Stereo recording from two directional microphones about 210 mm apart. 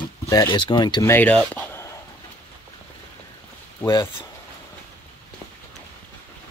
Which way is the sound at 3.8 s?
15° left (ahead or behind).